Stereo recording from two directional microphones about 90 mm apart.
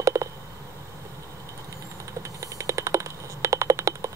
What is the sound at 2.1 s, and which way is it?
Typing, 35° right (ahead or behind).